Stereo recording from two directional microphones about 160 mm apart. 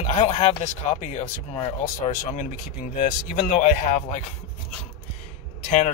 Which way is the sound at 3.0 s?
50° left (ahead or behind).